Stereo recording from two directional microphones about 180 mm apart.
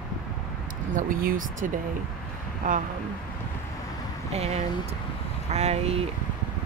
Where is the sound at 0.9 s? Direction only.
50° right (ahead or behind).